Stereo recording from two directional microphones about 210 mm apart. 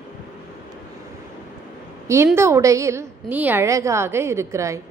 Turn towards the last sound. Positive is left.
turn(degrees=-15)  # may be behind; listen again after turning